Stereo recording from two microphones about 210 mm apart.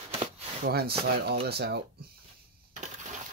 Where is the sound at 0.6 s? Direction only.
50° right (ahead or behind).